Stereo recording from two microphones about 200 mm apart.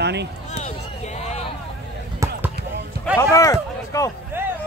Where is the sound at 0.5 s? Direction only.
35° left (ahead or behind).